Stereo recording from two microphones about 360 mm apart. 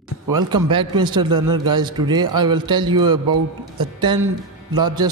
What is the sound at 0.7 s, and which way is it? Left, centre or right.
A man's voice, centre.